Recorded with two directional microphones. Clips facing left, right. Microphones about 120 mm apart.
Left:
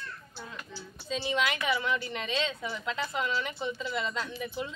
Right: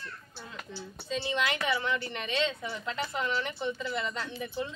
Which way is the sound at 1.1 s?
20° left (ahead or behind).